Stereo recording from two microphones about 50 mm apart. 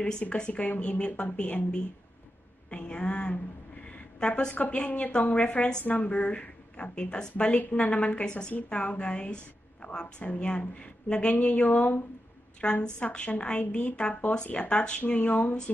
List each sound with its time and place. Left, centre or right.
0.2 s a woman's voice: left
12.8 s a woman's voice: centre